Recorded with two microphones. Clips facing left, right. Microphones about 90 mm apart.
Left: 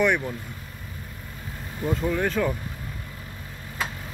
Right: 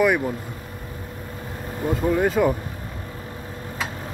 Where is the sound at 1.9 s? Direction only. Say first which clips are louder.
Right 4 dB; 15° right (ahead or behind).